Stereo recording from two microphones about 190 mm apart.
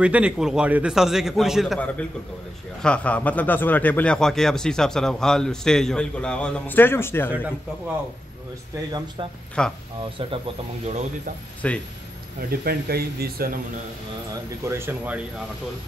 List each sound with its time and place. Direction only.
0.0 s a man's voice: 5° right (ahead or behind); by 7.2 s 10° left (ahead or behind)
9.6 s a man's voice: 5° left (ahead or behind)
10.9 s speech: 35° right (ahead or behind)
11.6 s speech: 5° left (ahead or behind)
12.4 s speech: 50° right (ahead or behind)
14.6 s speech: 15° right (ahead or behind)